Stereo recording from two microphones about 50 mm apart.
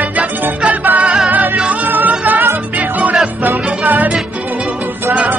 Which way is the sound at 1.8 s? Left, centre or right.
Right.